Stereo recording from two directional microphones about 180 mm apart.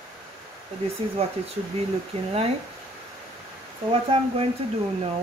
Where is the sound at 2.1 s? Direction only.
35° right (ahead or behind).